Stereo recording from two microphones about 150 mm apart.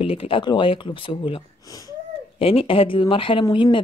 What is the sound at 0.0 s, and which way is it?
Speech, 40° left (ahead or behind).